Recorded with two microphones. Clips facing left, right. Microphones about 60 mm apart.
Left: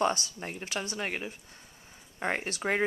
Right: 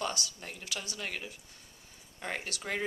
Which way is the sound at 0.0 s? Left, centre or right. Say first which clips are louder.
Left 7 dB; left.